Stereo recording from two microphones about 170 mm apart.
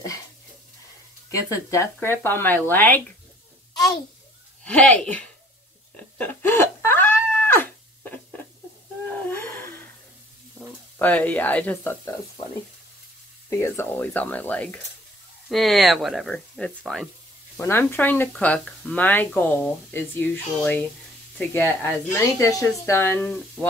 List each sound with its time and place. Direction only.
1.3 s speech: 20° left (ahead or behind)
3.7 s a sound: 20° left (ahead or behind)
4.6 s speech: 5° left (ahead or behind)
5.9 s cat: 10° left (ahead or behind)
9.3 s a sound: 15° left (ahead or behind)
11.0 s speech: 10° left (ahead or behind)
13.5 s speech: 15° left (ahead or behind)
17.6 s speech: 15° left (ahead or behind)